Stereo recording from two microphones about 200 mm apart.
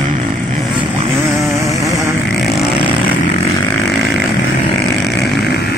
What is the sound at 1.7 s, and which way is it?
Vehicle, 15° right (ahead or behind).